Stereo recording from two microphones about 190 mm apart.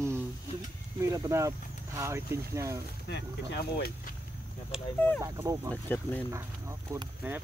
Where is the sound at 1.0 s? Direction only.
15° right (ahead or behind).